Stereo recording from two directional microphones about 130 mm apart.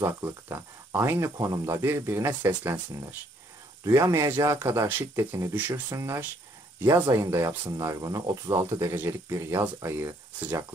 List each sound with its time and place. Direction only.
0.0 s speech: 20° right (ahead or behind)